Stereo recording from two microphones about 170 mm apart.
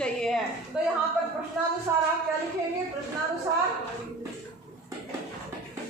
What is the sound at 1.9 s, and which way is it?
Speech, 15° right (ahead or behind).